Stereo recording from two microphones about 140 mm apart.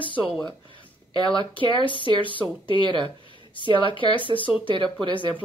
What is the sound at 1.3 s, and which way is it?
A woman's voice, 40° left (ahead or behind).